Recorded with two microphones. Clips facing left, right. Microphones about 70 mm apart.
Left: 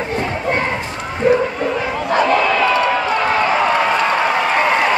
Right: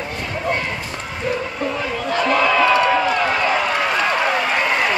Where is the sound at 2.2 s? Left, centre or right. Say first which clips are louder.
Right 2 dB; centre.